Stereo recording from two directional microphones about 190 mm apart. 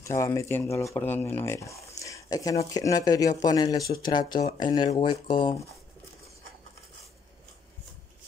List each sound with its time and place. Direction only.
0.0 s speech: 15° left (ahead or behind)